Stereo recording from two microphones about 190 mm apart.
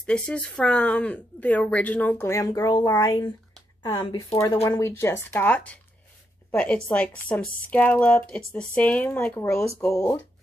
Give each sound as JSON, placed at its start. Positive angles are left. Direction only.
{"t": 0.0, "sound": "speech", "side_deg": 5}